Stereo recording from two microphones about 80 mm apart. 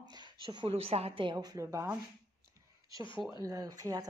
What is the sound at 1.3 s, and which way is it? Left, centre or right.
Speech, right.